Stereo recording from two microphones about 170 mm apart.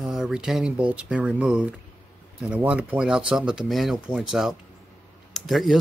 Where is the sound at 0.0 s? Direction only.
5° right (ahead or behind).